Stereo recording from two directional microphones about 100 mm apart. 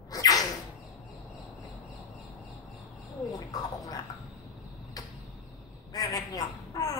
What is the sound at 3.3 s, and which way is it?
Bird, 40° left (ahead or behind).